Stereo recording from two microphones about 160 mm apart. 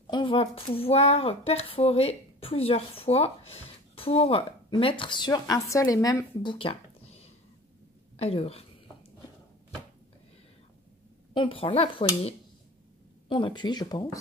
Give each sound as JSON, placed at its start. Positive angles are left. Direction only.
{"t": 0.0, "sound": "speech", "side_deg": 30}
{"t": 6.4, "sound": "a sound", "side_deg": 30}
{"t": 8.2, "sound": "speech", "side_deg": 40}
{"t": 11.3, "sound": "speech", "side_deg": 35}